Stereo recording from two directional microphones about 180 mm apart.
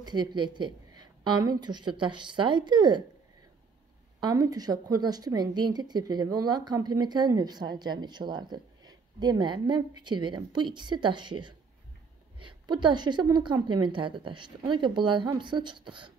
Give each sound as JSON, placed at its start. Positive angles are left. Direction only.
{"t": 0.0, "sound": "a woman's voice", "side_deg": -25}
{"t": 4.2, "sound": "a woman's voice", "side_deg": -20}